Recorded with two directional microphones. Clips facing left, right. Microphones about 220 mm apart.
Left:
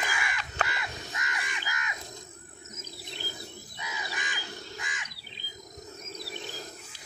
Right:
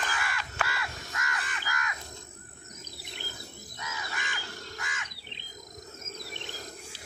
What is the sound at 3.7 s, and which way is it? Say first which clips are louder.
Crow: even; 15° left (ahead or behind).